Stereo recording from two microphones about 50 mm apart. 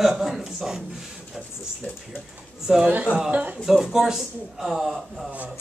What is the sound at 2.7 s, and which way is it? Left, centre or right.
Speech, centre.